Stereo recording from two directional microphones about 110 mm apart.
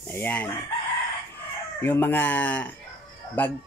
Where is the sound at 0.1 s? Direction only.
15° left (ahead or behind).